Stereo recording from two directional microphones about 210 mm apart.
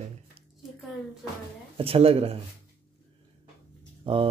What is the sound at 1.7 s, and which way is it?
Speech, 25° right (ahead or behind).